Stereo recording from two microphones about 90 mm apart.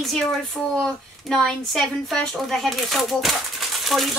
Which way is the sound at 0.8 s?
5° left (ahead or behind).